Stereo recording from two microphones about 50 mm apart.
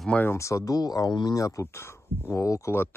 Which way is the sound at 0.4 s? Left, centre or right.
Left.